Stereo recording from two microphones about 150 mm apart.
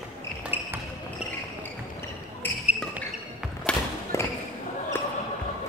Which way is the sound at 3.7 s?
5° left (ahead or behind).